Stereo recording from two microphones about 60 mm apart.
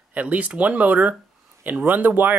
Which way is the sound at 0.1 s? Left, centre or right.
Right.